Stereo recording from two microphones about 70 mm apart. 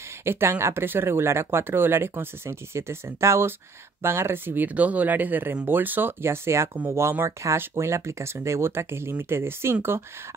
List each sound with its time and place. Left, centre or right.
0.2 s speech: right